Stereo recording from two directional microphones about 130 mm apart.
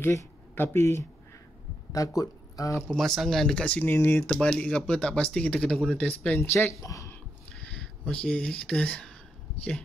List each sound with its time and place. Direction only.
0.0 s speech: 20° left (ahead or behind)
2.9 s speech: 5° left (ahead or behind); by 7.2 s 25° left (ahead or behind)
7.5 s speech: 5° left (ahead or behind)